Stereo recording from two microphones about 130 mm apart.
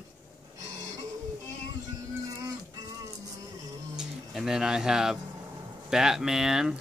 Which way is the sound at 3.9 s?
5° right (ahead or behind).